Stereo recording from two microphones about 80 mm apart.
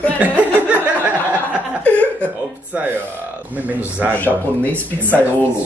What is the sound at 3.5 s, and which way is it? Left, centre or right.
Speech, right.